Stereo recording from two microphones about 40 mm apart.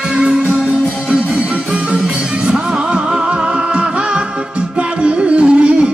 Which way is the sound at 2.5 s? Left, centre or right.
Right.